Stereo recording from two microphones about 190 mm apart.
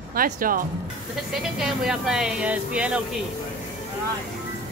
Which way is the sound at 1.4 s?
Centre (ahead or behind).